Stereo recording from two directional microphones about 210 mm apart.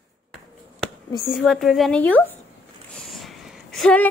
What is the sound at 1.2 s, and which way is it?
A woman's voice, centre (ahead or behind).